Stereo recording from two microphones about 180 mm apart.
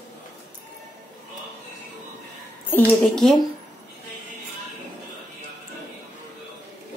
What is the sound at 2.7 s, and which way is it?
Speech, 5° left (ahead or behind).